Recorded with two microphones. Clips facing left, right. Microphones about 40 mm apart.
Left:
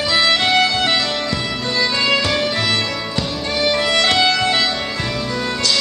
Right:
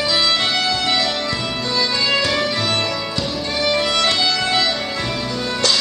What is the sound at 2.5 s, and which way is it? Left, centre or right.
Music, left.